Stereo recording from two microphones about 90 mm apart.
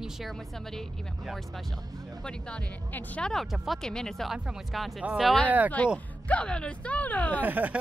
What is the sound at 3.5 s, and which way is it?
Speech, centre (ahead or behind).